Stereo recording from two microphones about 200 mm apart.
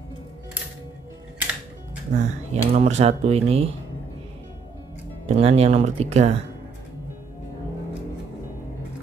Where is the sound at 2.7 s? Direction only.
35° right (ahead or behind).